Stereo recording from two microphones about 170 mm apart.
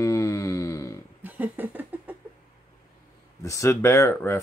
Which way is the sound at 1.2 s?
10° right (ahead or behind).